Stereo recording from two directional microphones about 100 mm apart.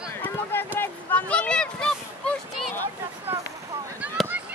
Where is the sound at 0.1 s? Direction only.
20° left (ahead or behind).